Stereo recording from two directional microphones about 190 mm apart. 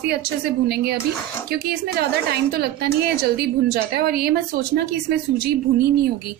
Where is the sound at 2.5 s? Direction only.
55° right (ahead or behind).